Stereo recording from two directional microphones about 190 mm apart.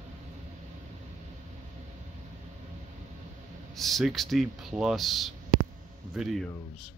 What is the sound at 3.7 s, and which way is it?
Speech, centre (ahead or behind).